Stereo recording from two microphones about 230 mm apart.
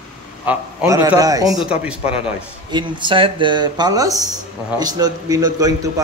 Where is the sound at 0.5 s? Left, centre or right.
Centre.